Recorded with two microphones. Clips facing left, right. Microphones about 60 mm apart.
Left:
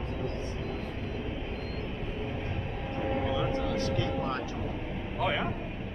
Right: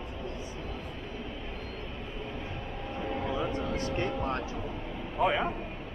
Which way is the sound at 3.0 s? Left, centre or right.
Centre.